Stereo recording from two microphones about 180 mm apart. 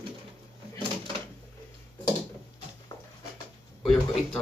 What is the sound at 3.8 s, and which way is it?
Speech, centre (ahead or behind).